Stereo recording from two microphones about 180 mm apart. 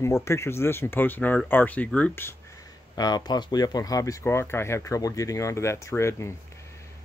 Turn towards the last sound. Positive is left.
turn(degrees=15)  # may be behind; listen again after turning